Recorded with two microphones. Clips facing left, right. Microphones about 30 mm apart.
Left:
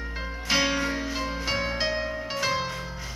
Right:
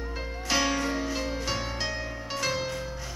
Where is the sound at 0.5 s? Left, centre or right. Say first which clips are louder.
Left 2 dB; centre.